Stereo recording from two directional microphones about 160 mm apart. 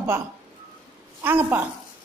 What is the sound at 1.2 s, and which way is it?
Speech, 10° right (ahead or behind).